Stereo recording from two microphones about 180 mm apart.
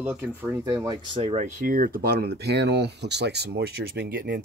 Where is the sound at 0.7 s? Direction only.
20° right (ahead or behind).